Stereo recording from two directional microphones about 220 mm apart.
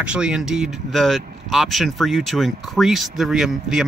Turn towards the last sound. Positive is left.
turn(degrees=-5)  # may be behind; listen again after turning